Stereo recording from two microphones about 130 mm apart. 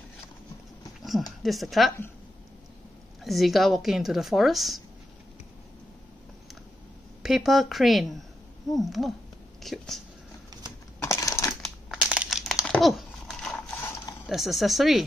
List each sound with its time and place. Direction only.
1.4 s speech: centre (ahead or behind)
3.3 s speech: centre (ahead or behind)
7.2 s speech: centre (ahead or behind)
11.0 s typing: 20° left (ahead or behind)
11.6 s crumpling: 5° right (ahead or behind)
14.2 s speech: centre (ahead or behind)